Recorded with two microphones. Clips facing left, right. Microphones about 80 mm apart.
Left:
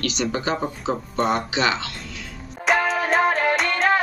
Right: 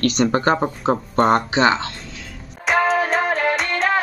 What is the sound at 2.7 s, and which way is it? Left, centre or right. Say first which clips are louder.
Music: right 1 dB; centre.